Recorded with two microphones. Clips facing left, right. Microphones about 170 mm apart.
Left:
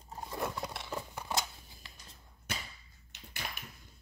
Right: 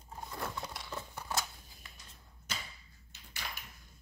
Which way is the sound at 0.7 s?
25° left (ahead or behind).